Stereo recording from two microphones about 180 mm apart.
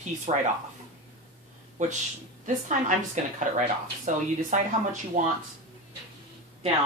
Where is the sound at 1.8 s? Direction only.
45° right (ahead or behind).